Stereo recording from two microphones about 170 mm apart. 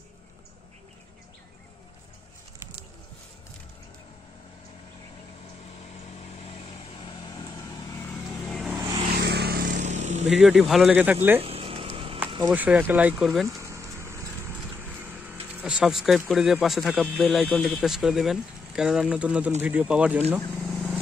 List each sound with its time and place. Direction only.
8.5 s vehicle: centre (ahead or behind)
9.1 s vehicle: 80° right; by 10.2 s 45° right (ahead or behind)
10.3 s speech: 5° right (ahead or behind)
11.4 s a sound: 35° right (ahead or behind)
12.4 s speech: 10° right (ahead or behind)
13.5 s a sound: 15° right (ahead or behind)
15.0 s vehicle: 10° right (ahead or behind)
16.3 s speech: centre (ahead or behind)
20.3 s vehicle: centre (ahead or behind)